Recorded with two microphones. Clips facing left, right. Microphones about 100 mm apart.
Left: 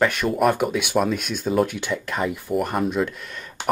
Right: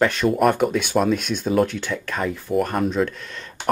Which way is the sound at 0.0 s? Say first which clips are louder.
Right 2 dB; 5° left (ahead or behind).